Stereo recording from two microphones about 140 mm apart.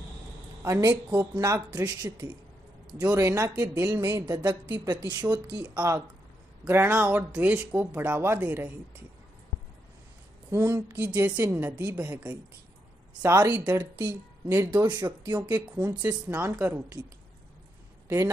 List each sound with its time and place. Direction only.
0.6 s a woman's voice: 20° right (ahead or behind)
4.9 s speech: 10° right (ahead or behind)
10.5 s a woman's voice: 20° right (ahead or behind)
14.9 s a woman's voice: 30° right (ahead or behind)
15.5 s speech: 10° right (ahead or behind)
18.0 s speech: 20° right (ahead or behind)